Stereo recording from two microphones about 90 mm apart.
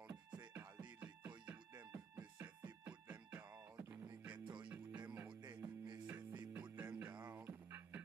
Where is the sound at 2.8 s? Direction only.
15° right (ahead or behind).